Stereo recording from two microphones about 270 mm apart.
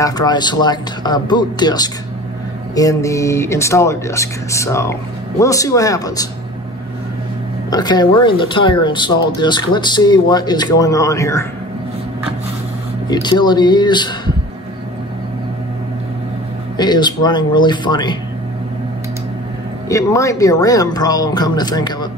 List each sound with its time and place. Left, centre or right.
0.0 s speech: centre
7.7 s speech: centre
13.1 s speech: centre
16.7 s speech: centre
19.9 s speech: centre